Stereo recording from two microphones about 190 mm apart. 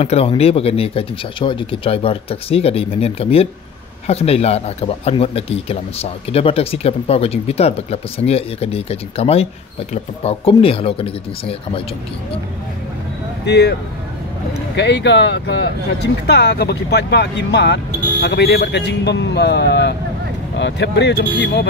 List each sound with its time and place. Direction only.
0.0 s speech: 30° left (ahead or behind)
13.5 s a man's voice: 60° left (ahead or behind)
14.8 s a man's voice: 65° left (ahead or behind)